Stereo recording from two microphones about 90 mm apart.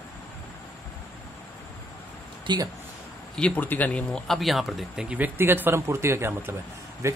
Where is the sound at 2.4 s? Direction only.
55° right (ahead or behind).